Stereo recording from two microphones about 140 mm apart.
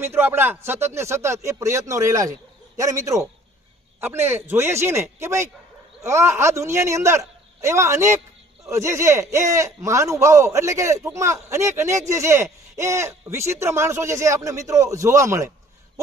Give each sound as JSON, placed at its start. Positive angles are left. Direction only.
{"t": 0.0, "sound": "speech", "side_deg": -15}